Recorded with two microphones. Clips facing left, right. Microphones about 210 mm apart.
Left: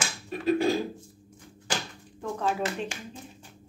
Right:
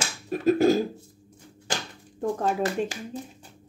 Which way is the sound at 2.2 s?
45° right (ahead or behind).